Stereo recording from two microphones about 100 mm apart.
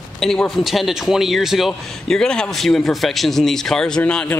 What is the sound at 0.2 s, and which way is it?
A man's voice, 5° left (ahead or behind).